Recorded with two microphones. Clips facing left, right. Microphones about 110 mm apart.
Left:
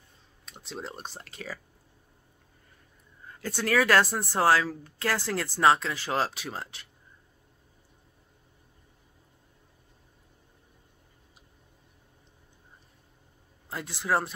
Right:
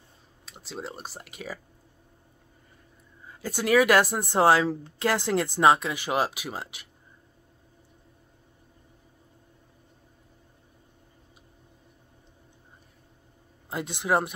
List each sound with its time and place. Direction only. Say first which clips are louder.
0.5 s speech: right 1 dB; centre (ahead or behind)
3.3 s speech: right 4 dB; 10° right (ahead or behind)
13.7 s speech: right 3 dB; 20° right (ahead or behind)